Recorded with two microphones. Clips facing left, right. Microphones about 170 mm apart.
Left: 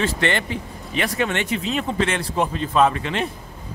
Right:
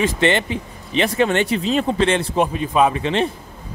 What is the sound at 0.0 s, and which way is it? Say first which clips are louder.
Speech: right 4 dB; 20° right (ahead or behind).